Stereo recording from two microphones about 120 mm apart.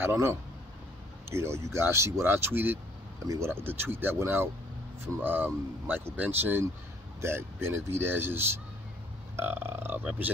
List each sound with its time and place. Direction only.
0.0 s speech: 20° right (ahead or behind)